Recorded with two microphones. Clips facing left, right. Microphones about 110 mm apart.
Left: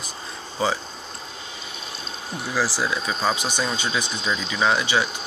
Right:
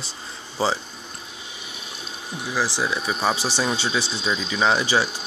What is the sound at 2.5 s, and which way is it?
Speech, 20° right (ahead or behind).